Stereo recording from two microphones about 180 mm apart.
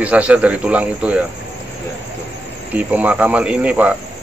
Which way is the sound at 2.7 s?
10° right (ahead or behind).